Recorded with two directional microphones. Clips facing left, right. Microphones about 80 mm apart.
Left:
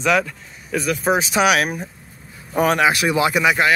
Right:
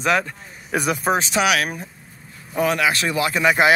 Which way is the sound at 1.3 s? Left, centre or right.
Left.